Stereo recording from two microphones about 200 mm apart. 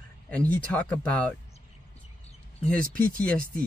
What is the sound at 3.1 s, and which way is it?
Speech, 5° left (ahead or behind).